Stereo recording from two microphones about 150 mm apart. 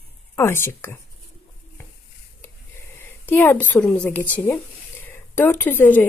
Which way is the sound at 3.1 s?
15° left (ahead or behind).